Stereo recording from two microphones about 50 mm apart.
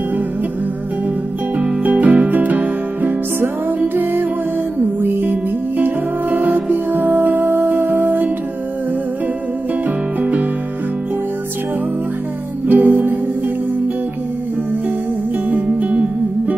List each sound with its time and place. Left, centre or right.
1.8 s music: right
9.8 s music: right
12.6 s music: right
15.6 s music: right